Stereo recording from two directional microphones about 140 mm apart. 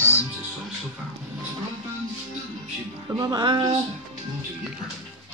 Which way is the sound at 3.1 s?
30° right (ahead or behind).